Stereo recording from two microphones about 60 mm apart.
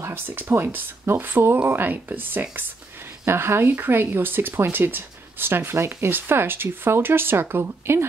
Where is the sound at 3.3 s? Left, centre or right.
Right.